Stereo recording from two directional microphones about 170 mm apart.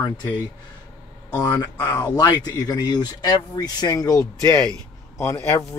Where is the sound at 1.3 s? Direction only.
25° left (ahead or behind).